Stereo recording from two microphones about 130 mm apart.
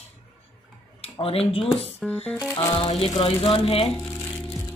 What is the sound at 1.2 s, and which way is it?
Speech, 45° left (ahead or behind).